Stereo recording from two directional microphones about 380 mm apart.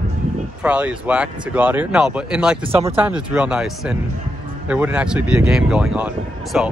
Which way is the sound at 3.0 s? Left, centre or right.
Centre.